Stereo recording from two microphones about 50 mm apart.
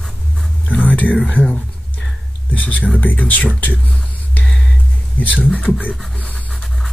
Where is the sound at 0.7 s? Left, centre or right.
Left.